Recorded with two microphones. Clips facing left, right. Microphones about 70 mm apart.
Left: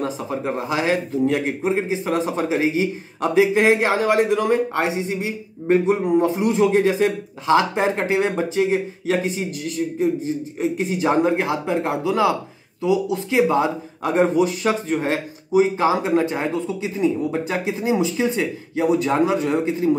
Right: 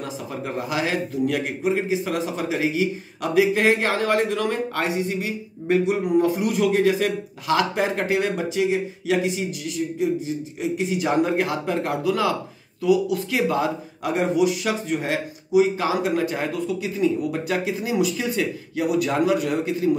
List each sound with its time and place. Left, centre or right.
0.0 s speech: left